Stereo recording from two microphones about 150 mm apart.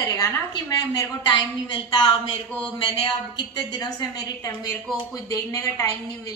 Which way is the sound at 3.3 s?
30° left (ahead or behind).